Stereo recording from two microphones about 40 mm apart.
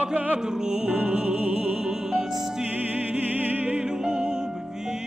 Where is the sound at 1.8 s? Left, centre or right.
Centre.